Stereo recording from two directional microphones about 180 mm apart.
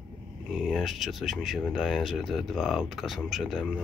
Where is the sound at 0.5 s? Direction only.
5° right (ahead or behind).